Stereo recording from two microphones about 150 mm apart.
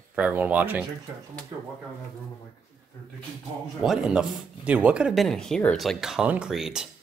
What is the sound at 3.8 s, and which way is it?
Speech, 5° right (ahead or behind).